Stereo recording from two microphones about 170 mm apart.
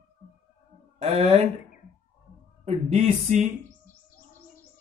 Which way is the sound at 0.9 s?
35° right (ahead or behind).